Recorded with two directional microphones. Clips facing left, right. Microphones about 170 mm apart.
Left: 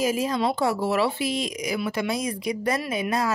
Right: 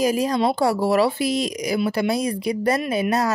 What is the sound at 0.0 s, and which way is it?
Speech, 40° right (ahead or behind).